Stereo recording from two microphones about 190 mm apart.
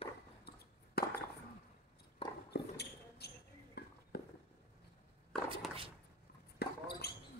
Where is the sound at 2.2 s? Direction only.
30° left (ahead or behind).